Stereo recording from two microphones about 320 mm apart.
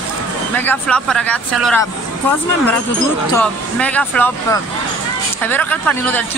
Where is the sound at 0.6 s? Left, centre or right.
Centre.